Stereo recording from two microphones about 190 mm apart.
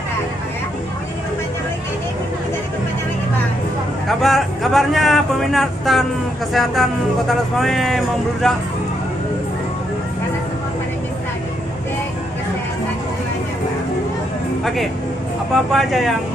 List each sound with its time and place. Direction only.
4.2 s speech: centre (ahead or behind)
14.6 s speech: centre (ahead or behind)